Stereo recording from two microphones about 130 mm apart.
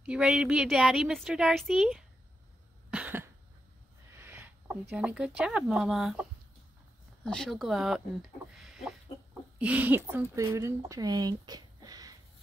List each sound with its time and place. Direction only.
0.0 s a woman's voice: 10° right (ahead or behind)
2.9 s cough: 10° right (ahead or behind)
4.2 s speech: 15° right (ahead or behind)
7.2 s a woman's voice: 5° left (ahead or behind); by 12.2 s 30° right (ahead or behind)